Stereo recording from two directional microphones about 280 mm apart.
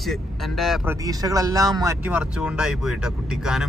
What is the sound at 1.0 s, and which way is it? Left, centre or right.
Speech, centre.